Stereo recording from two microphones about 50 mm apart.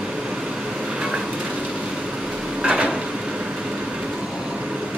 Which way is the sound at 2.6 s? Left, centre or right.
Right.